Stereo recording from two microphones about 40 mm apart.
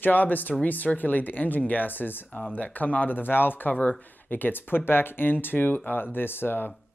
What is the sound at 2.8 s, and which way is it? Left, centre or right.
Speech, left.